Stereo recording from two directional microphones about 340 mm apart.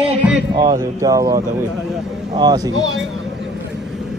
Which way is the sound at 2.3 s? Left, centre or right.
Centre.